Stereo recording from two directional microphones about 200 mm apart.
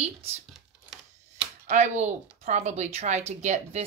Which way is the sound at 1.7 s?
35° right (ahead or behind).